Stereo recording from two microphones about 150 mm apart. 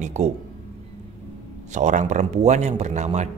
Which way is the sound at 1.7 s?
55° right (ahead or behind).